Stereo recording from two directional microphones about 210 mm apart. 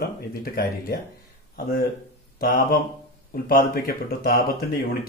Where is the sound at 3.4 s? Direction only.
45° left (ahead or behind).